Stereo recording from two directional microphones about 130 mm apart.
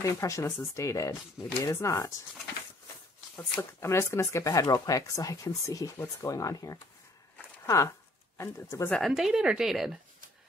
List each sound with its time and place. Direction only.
0.0 s speech: 25° left (ahead or behind)
3.3 s speech: 20° left (ahead or behind)
8.9 s speech: centre (ahead or behind)